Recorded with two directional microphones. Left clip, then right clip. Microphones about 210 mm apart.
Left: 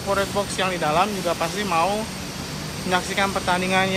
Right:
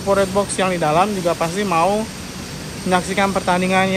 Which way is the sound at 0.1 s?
5° left (ahead or behind).